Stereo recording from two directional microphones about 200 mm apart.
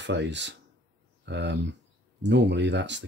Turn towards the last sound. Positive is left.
turn(degrees=-60)  # may be behind; listen again after turning